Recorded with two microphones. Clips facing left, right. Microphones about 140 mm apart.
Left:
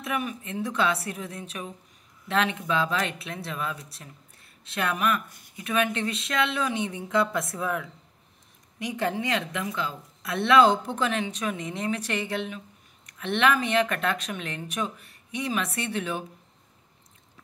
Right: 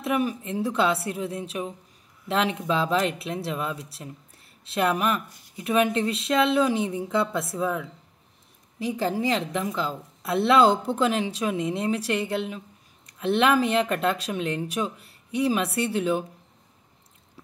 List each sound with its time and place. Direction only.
0.0 s a woman's voice: 30° right (ahead or behind)